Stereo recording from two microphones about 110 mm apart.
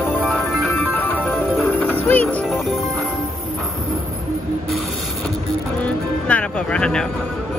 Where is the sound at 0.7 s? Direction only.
20° left (ahead or behind).